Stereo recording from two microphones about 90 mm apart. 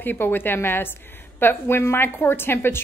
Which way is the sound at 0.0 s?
20° left (ahead or behind).